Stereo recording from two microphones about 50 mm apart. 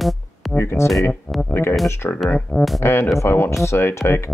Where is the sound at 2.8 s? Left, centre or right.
Left.